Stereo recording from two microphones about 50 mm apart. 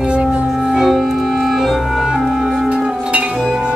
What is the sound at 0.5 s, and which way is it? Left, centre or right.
Music, centre.